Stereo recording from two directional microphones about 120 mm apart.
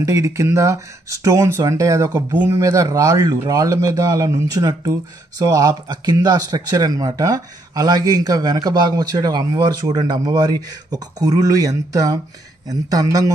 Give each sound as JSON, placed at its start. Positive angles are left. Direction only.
{"t": 0.0, "sound": "speech", "side_deg": -25}